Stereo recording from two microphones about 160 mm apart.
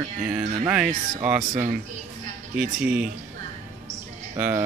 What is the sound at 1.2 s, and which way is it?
Speech, 15° right (ahead or behind).